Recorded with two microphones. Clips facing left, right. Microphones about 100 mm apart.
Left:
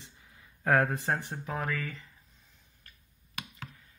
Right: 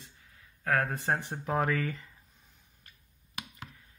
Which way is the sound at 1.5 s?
35° right (ahead or behind).